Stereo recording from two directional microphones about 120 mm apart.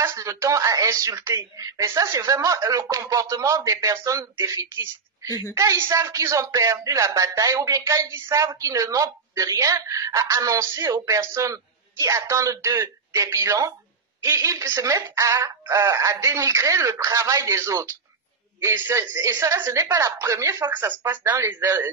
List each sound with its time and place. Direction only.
0.0 s speech: 25° right (ahead or behind)